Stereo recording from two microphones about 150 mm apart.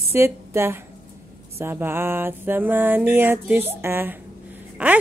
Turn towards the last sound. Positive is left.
turn(degrees=-10)  # may be behind; listen again after turning